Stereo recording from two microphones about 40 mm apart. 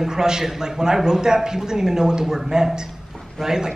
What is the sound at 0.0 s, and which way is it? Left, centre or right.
Speech, centre.